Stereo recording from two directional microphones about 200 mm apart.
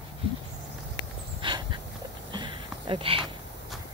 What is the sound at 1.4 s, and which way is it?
Dog, 25° right (ahead or behind).